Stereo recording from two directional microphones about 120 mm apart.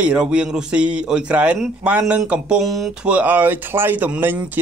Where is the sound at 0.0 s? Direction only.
10° right (ahead or behind).